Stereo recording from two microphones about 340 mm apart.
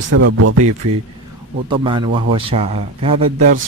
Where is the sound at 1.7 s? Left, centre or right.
Centre.